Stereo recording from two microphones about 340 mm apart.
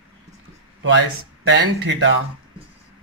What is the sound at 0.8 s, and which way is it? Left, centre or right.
Speech, right.